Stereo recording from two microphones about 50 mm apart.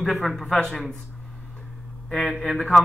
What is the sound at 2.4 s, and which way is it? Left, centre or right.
Speech, left.